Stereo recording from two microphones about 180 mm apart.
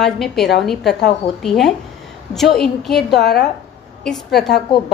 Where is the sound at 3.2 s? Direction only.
65° left (ahead or behind).